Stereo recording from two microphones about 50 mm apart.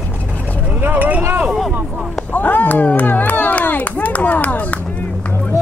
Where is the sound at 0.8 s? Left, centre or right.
Right.